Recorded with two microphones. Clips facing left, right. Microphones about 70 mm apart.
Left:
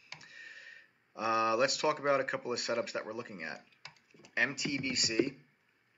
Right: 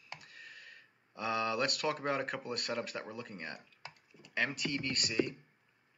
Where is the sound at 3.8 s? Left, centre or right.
Right.